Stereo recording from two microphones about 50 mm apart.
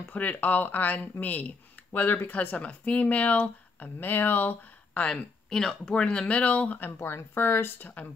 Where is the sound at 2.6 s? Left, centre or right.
Left.